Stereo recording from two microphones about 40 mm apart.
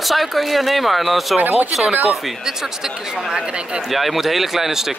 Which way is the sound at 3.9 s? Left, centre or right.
Centre.